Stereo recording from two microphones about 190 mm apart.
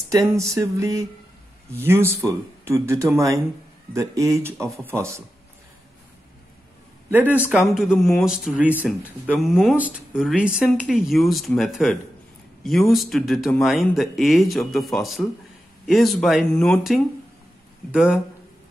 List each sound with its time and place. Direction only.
0.4 s speech: 15° right (ahead or behind)
7.1 s speech: 10° right (ahead or behind)